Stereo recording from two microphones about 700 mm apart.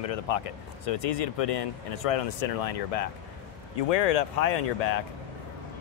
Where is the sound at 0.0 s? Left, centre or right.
Left.